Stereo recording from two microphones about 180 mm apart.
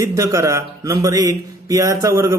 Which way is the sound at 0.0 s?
20° right (ahead or behind).